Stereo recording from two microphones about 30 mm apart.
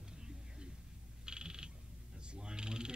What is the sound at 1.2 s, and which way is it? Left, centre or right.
Frog, right.